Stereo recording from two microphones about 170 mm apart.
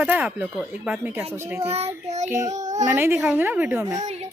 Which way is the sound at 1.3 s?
15° right (ahead or behind).